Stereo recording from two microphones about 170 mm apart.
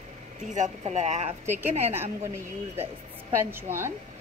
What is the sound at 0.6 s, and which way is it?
Speech, 40° right (ahead or behind).